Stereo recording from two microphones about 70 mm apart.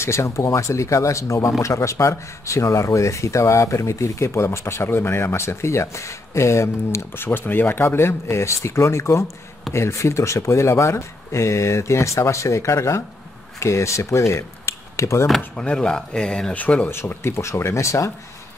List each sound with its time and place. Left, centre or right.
0.0 s speech: left
7.2 s speech: left
15.5 s speech: centre
16.6 s speech: left
16.9 s speech: left